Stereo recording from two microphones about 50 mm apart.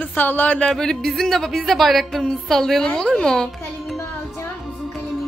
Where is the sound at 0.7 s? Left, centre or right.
Centre.